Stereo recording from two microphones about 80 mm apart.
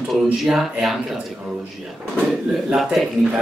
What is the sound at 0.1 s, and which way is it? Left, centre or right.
Speech, centre.